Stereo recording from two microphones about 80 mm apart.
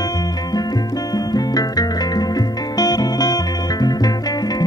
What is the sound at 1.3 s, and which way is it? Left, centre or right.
Music, left.